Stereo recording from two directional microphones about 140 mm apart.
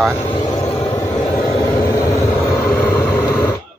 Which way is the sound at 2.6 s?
15° left (ahead or behind).